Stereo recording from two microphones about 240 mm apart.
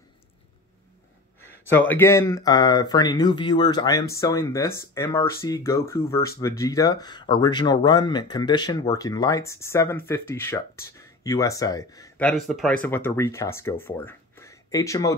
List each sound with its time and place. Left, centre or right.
1.4 s speech: centre
12.3 s speech: centre